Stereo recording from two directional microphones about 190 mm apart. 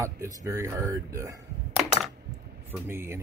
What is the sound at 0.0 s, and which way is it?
Speech, 15° right (ahead or behind).